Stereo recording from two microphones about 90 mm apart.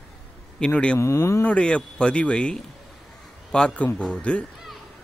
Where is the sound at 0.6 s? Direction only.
10° left (ahead or behind).